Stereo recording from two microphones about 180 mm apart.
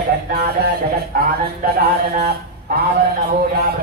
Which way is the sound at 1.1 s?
50° right (ahead or behind).